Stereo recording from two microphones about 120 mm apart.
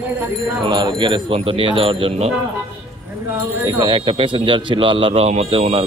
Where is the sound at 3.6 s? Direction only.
40° right (ahead or behind).